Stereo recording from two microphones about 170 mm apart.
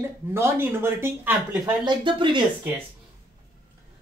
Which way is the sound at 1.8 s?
25° right (ahead or behind).